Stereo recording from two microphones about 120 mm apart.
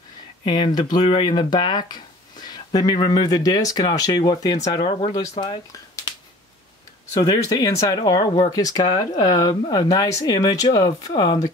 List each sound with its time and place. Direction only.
0.5 s speech: 35° left (ahead or behind)
4.8 s speech: 50° left (ahead or behind)
5.4 s speech: 30° left (ahead or behind)
7.2 s speech: 30° left (ahead or behind)